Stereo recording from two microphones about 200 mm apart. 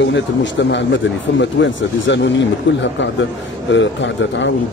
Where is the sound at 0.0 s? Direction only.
60° left (ahead or behind).